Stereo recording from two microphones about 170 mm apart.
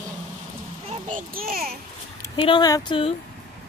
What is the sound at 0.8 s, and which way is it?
Speech, 50° right (ahead or behind).